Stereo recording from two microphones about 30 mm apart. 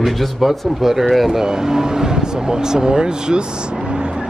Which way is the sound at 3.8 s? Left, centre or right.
Right.